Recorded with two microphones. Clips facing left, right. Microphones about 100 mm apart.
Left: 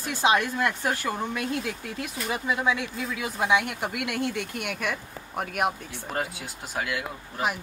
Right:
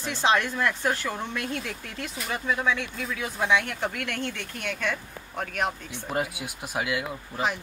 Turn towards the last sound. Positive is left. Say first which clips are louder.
# right 2 dB
turn(degrees=-15)  # may be behind; listen again after turning